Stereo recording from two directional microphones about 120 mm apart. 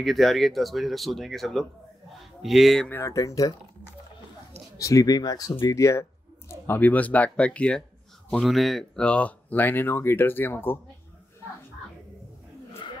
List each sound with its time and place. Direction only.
0.0 s speech: centre (ahead or behind)
2.9 s speech: 25° left (ahead or behind)
4.7 s speech: 25° left (ahead or behind)